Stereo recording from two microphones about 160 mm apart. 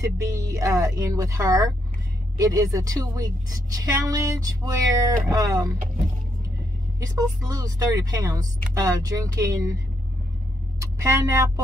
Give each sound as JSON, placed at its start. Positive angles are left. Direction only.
{"t": 0.0, "sound": "a woman's voice", "side_deg": -20}
{"t": 7.0, "sound": "a woman's voice", "side_deg": -20}
{"t": 10.8, "sound": "speech", "side_deg": -20}